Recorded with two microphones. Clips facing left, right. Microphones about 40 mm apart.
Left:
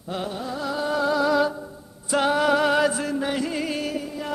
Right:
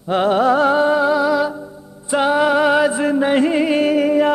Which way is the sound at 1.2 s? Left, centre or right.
Centre.